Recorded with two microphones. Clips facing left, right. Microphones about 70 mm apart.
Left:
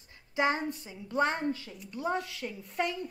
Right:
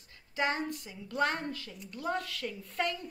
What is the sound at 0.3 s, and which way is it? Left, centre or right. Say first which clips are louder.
A woman's voice: left 3 dB; left.